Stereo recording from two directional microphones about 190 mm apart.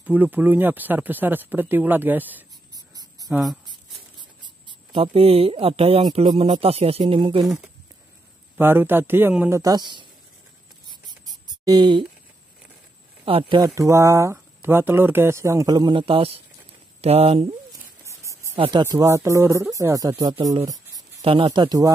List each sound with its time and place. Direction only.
0.0 s speech: 10° right (ahead or behind)
4.2 s speech: 25° right (ahead or behind)
7.4 s speech: centre (ahead or behind)
8.5 s speech: 10° right (ahead or behind)
9.6 s speech: 20° right (ahead or behind)
10.9 s a sound: 20° right (ahead or behind)
13.2 s speech: 30° right (ahead or behind)
18.0 s a sound: 15° right (ahead or behind)
18.6 s speech: 25° right (ahead or behind)